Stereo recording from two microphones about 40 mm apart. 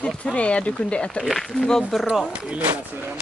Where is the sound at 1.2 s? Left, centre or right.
Centre.